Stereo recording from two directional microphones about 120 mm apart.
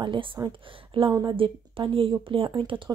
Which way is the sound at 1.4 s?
45° right (ahead or behind).